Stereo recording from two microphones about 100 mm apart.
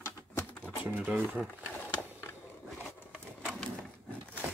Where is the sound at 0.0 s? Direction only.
20° left (ahead or behind).